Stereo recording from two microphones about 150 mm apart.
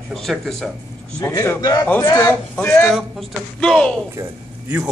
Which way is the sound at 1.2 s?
20° left (ahead or behind).